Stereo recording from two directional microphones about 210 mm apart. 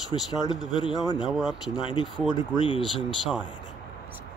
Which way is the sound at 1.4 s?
Centre (ahead or behind).